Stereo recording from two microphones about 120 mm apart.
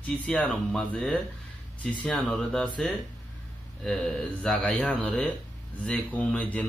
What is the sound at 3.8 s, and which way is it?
Speech, 5° left (ahead or behind).